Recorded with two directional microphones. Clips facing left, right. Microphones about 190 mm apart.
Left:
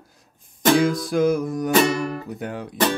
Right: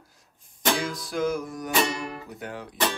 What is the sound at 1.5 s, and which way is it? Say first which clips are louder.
Music: left 8 dB; 40° left (ahead or behind).